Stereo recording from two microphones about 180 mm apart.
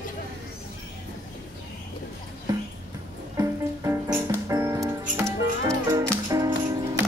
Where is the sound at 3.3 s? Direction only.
20° right (ahead or behind).